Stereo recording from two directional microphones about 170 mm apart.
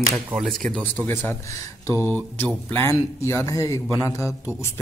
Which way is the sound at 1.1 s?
15° left (ahead or behind).